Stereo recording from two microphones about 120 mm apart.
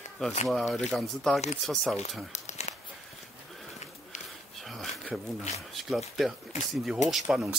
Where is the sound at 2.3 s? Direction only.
70° left (ahead or behind).